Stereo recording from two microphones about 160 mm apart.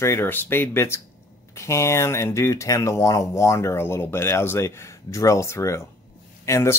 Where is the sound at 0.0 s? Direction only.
15° left (ahead or behind).